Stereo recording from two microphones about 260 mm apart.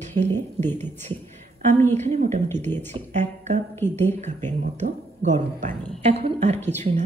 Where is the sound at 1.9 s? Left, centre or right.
Right.